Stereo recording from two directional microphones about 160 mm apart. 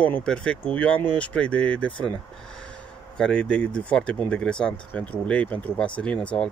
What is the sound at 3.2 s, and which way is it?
Speech, 5° left (ahead or behind).